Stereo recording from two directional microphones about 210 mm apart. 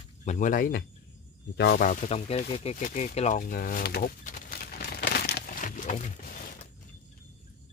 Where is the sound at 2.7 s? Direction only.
35° left (ahead or behind).